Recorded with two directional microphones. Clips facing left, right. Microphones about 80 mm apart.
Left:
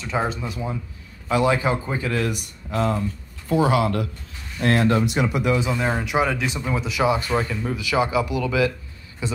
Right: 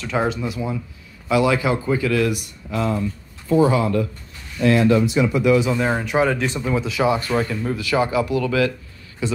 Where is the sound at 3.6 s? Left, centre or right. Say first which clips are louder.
Right 1 dB; left.